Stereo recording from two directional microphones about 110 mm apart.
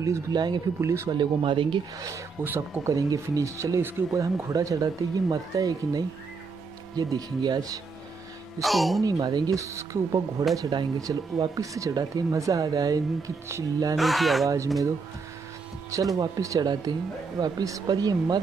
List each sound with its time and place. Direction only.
0.0 s speech: 35° right (ahead or behind)
0.7 s speech: 25° right (ahead or behind)
1.1 s speech: 50° right (ahead or behind)
2.4 s speech: 20° right (ahead or behind)
2.9 s speech: 30° right (ahead or behind)
8.5 s speech: centre (ahead or behind)
9.0 s speech: 40° right (ahead or behind)
9.6 s speech: 30° right (ahead or behind)
13.9 s speech: centre (ahead or behind)
15.9 s speech: 30° right (ahead or behind)